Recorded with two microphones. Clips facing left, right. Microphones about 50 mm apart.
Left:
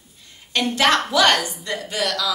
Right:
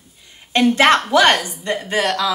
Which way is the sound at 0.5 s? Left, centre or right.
Right.